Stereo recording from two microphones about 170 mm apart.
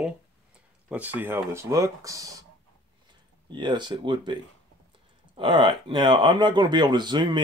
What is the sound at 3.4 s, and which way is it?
Speech, 25° right (ahead or behind).